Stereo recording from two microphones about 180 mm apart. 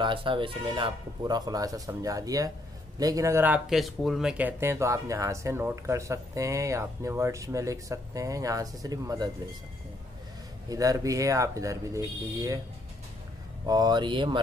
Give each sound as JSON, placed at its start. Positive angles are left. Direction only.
{"t": 0.0, "sound": "speech", "side_deg": -30}
{"t": 10.7, "sound": "speech", "side_deg": -20}
{"t": 13.7, "sound": "speech", "side_deg": -20}